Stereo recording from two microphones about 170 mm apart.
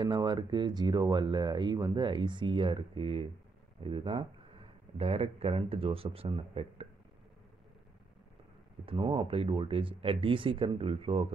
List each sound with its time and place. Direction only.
0.0 s speech: 25° right (ahead or behind)
8.8 s speech: 30° right (ahead or behind)